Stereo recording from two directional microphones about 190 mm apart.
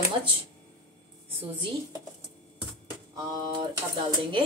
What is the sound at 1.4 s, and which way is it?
Speech, 25° right (ahead or behind).